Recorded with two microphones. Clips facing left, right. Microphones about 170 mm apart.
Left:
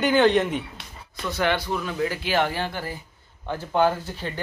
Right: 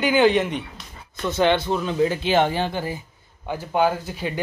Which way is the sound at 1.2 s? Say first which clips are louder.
Right 5 dB; 25° right (ahead or behind).